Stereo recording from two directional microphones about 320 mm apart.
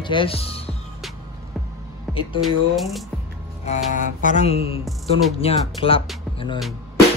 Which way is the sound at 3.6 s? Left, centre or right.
Left.